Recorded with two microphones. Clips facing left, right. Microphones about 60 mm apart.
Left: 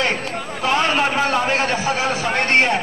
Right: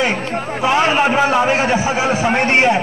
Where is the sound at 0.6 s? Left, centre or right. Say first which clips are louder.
Right 4 dB; centre.